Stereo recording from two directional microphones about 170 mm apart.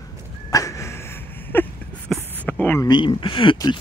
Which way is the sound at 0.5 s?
20° left (ahead or behind).